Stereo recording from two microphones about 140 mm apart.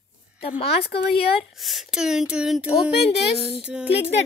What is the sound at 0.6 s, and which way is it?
Speech, 45° left (ahead or behind).